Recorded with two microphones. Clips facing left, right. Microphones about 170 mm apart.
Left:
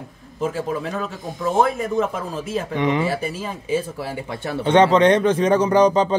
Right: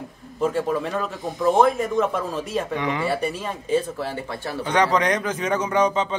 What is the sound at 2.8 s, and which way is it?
Speech, 20° left (ahead or behind).